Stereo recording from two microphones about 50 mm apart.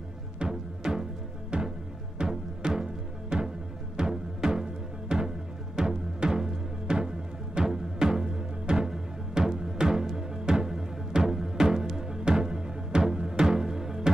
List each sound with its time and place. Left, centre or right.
0.4 s music: centre